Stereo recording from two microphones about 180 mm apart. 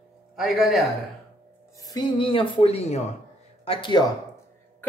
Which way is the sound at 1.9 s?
25° left (ahead or behind).